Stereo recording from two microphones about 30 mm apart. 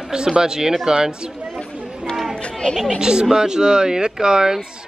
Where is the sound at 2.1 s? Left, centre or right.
Centre.